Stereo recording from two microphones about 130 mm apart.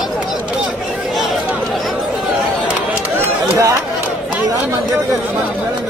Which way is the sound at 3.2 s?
25° right (ahead or behind).